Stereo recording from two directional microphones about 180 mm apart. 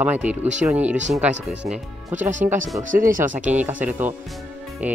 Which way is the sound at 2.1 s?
45° right (ahead or behind).